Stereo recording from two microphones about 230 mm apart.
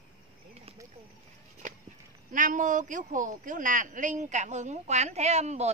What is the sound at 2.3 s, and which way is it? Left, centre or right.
Speech, right.